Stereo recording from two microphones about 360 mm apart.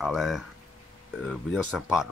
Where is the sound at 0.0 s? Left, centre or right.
Centre.